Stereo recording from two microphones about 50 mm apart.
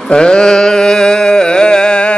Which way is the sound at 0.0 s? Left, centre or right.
Centre.